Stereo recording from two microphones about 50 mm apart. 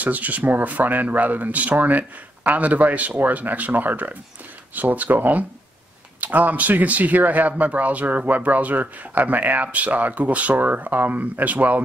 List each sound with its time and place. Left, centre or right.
0.0 s speech: right